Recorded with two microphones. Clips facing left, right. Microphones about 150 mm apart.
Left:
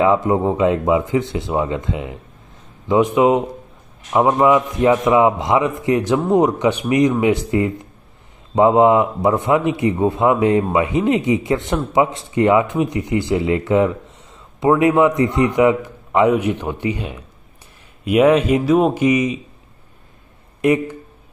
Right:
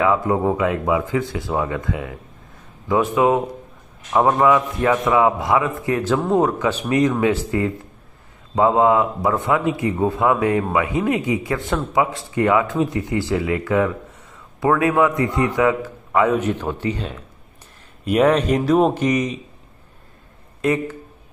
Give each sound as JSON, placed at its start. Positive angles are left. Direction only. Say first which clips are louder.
{"t": 0.0, "sound": "a man's voice", "louder": "left 3 dB", "side_deg": 25}
{"t": 20.6, "sound": "a man's voice", "louder": "left 4 dB", "side_deg": 15}